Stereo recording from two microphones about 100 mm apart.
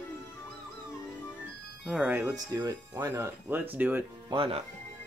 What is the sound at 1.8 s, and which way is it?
Speech, 5° right (ahead or behind).